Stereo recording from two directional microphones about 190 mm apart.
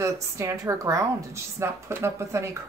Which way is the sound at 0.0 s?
15° right (ahead or behind).